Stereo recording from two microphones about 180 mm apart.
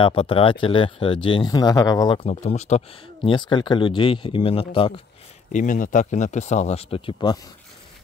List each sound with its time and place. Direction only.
0.0 s speech: 30° left (ahead or behind)
2.2 s speech: 40° left (ahead or behind)
3.2 s speech: 25° left (ahead or behind)
5.5 s speech: 45° left (ahead or behind); by 7.3 s 30° left (ahead or behind)